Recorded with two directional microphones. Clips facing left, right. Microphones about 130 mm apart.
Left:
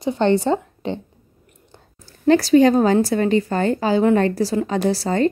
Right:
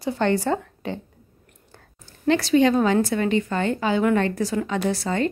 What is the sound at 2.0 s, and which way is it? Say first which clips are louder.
Speech: left 6 dB; 40° left (ahead or behind).